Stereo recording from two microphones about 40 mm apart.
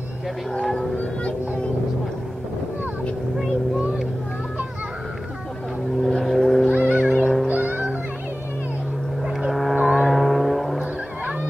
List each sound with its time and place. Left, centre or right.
0.6 s speech: centre
6.0 s a sound: centre
6.7 s music: right
7.4 s music: right
9.5 s vehicle: centre
9.8 s vehicle: centre
10.0 s vehicle: centre